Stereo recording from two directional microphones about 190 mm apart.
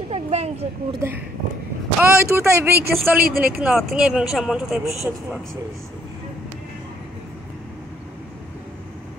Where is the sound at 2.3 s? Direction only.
15° right (ahead or behind).